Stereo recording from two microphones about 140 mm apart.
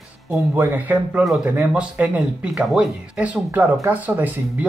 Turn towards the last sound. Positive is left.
turn(degrees=-10)  # may be behind; listen again after turning